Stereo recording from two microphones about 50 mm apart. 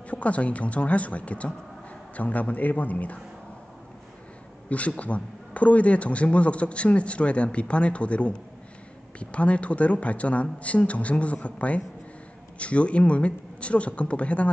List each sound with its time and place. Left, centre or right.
0.1 s a man's voice: left
4.6 s speech: left